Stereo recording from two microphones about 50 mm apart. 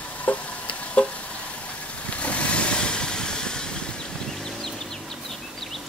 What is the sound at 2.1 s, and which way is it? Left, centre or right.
Vehicle, left.